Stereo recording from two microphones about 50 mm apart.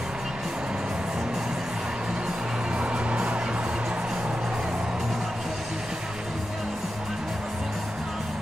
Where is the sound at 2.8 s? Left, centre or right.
Right.